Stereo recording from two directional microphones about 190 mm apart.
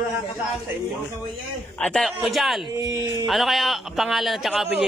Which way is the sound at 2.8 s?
20° right (ahead or behind).